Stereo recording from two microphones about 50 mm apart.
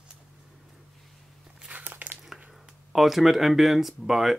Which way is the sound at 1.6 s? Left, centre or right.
Right.